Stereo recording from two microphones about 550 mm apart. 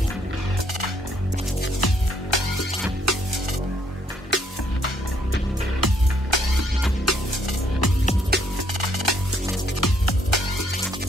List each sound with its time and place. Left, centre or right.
1.8 s music: left
2.3 s music: left
3.1 s music: right
4.3 s music: centre
5.8 s music: right
6.3 s music: right
7.1 s music: left
7.8 s music: left
8.5 s music: right
9.8 s music: left
10.3 s music: left